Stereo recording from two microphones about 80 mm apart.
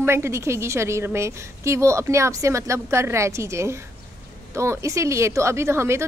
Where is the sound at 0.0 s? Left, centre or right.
Right.